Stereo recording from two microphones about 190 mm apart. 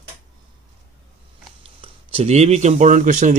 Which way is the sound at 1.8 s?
30° right (ahead or behind).